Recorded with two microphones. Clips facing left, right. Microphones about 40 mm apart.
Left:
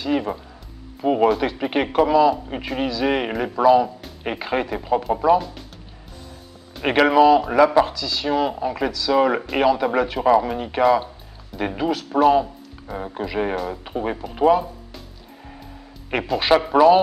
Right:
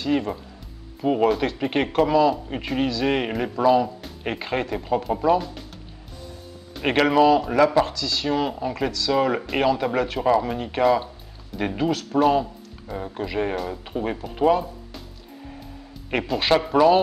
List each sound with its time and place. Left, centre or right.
0.0 s speech: centre
6.8 s speech: centre
16.1 s speech: centre